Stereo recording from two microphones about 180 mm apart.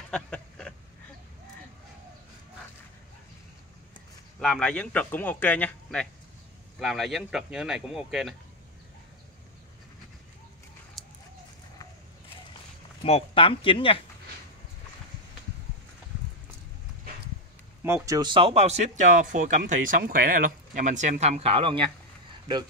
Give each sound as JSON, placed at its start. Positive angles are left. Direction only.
{"t": 0.1, "sound": "a sound", "side_deg": 5}
{"t": 4.4, "sound": "speech", "side_deg": 5}
{"t": 11.0, "sound": "bird", "side_deg": 0}
{"t": 13.0, "sound": "speech", "side_deg": 30}
{"t": 17.8, "sound": "speech", "side_deg": -15}